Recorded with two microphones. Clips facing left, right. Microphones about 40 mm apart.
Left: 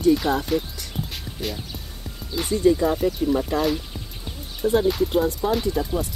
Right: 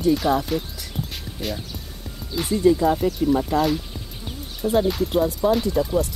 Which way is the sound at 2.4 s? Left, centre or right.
Centre.